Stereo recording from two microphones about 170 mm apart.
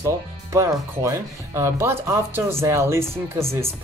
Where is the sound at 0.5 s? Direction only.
20° right (ahead or behind).